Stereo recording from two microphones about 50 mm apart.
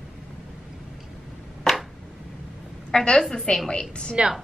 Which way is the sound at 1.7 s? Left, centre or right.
Centre.